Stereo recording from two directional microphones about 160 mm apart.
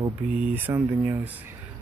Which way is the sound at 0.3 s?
10° right (ahead or behind).